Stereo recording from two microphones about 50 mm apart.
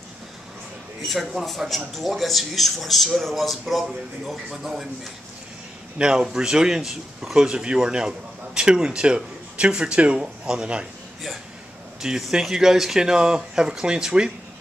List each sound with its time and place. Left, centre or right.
1.0 s speech: centre
5.9 s speech: centre
12.0 s speech: centre